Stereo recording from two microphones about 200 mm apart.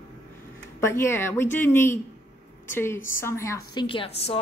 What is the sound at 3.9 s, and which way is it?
Speech, 30° left (ahead or behind).